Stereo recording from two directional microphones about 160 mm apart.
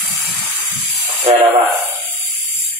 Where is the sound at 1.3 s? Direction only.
45° right (ahead or behind).